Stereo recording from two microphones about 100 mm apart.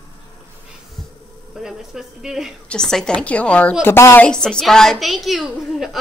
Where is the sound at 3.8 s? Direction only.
25° left (ahead or behind).